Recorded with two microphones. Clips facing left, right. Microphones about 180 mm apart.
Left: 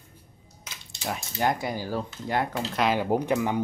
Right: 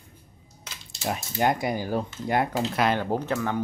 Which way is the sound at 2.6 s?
Centre (ahead or behind).